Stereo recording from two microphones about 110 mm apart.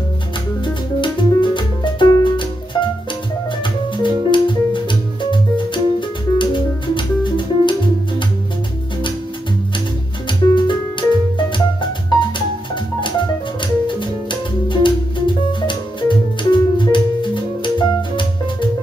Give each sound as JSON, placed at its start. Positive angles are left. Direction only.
{"t": 1.0, "sound": "music", "side_deg": 45}
{"t": 10.5, "sound": "music", "side_deg": 45}
{"t": 13.6, "sound": "music", "side_deg": 45}